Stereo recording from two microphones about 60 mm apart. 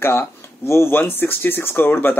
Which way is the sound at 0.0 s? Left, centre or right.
Left.